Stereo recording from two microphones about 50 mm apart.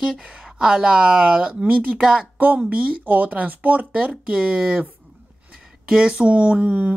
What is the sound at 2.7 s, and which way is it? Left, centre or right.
Speech, right.